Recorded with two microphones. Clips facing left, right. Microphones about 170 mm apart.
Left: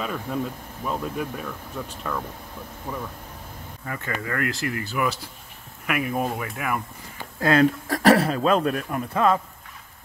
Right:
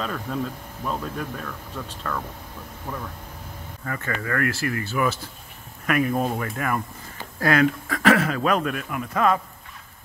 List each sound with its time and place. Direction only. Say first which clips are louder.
0.0 s speech: even; 5° left (ahead or behind)
3.8 s speech: right 1 dB; 15° left (ahead or behind)
7.3 s speech: left 1 dB; 25° left (ahead or behind)
7.9 s speech: left 3 dB; 35° left (ahead or behind)